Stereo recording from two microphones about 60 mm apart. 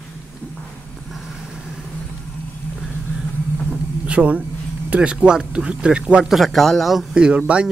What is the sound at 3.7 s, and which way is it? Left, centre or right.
Vehicle, centre.